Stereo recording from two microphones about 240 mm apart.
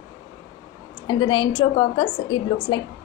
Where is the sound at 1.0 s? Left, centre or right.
Centre.